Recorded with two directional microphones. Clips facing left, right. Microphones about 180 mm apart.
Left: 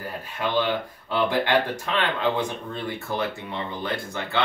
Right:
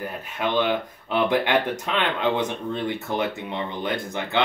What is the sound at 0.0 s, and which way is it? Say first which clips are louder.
Speech: right 2 dB; 20° right (ahead or behind).